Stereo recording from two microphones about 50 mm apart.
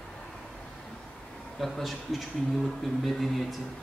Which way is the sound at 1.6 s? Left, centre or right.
Centre.